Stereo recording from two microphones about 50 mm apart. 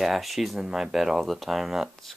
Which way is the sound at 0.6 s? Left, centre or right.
Centre.